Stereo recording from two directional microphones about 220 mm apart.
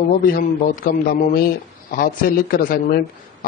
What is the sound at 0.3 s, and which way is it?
A man's voice, 40° left (ahead or behind).